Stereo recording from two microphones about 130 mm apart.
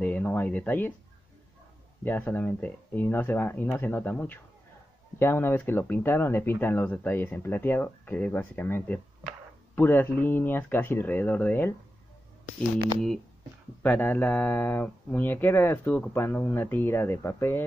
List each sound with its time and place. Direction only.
0.0 s speech: 15° left (ahead or behind)
2.0 s speech: 15° left (ahead or behind)
13.8 s speech: 15° left (ahead or behind)